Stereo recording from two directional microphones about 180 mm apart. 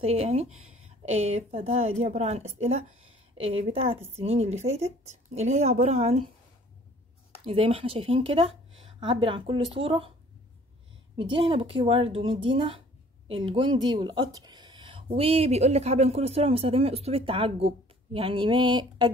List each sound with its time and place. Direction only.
0.0 s speech: 35° right (ahead or behind)
7.4 s speech: 30° right (ahead or behind)
11.1 s speech: 30° right (ahead or behind)
13.9 s a sound: 25° right (ahead or behind)
15.1 s speech: 35° right (ahead or behind)